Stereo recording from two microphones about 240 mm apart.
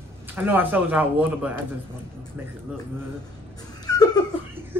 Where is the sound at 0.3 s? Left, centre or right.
Centre.